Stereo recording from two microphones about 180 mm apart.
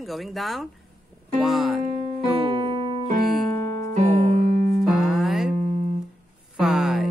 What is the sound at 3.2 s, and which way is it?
Keyboard, centre (ahead or behind).